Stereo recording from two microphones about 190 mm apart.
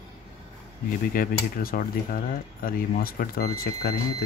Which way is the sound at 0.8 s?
50° left (ahead or behind).